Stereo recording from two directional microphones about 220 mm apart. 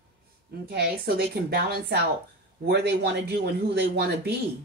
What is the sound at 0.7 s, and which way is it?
Speech, 45° right (ahead or behind).